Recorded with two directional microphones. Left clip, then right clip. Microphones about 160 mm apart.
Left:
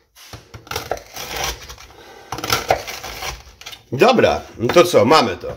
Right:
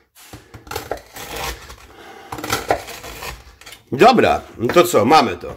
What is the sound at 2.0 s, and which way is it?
Typing, 45° right (ahead or behind).